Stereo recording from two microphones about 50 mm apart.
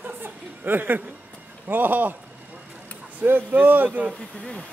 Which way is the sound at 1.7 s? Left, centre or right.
Right.